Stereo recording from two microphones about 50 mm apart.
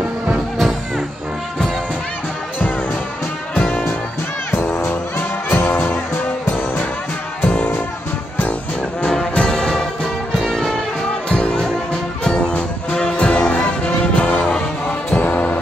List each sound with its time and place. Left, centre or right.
0.6 s music: centre
4.5 s music: left
9.0 s music: centre
14.4 s music: centre
15.0 s music: left
15.3 s music: left